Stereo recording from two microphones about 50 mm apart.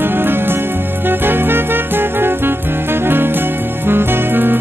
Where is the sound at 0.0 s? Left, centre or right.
Right.